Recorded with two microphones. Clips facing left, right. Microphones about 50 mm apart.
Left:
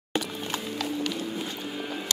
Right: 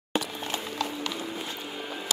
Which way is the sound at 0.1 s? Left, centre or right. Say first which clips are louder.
Even; centre.